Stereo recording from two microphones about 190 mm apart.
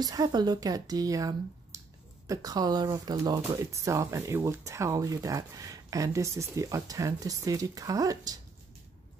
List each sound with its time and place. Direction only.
0.0 s speech: 20° right (ahead or behind)